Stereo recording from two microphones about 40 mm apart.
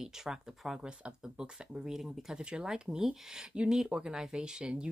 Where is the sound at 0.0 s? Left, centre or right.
Centre.